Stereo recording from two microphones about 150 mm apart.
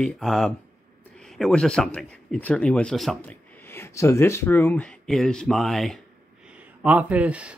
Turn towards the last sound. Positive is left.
turn(degrees=-10)  # may be behind; listen again after turning